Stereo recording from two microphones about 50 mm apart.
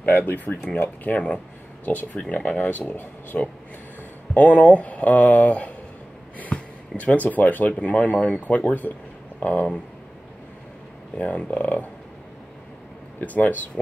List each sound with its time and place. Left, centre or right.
0.0 s speech: left
3.3 s speech: left
6.5 s a sound: left
7.0 s speech: left
11.1 s speech: left
13.2 s speech: left